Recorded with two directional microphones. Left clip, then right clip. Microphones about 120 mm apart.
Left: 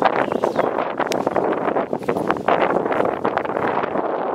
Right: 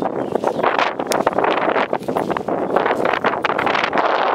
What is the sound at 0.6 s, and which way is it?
Wind noise, 15° right (ahead or behind).